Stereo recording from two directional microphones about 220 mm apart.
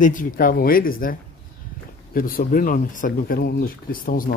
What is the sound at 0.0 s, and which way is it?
Speech, 35° left (ahead or behind).